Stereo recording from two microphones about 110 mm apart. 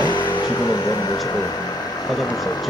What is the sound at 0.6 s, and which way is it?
Speech, 35° left (ahead or behind).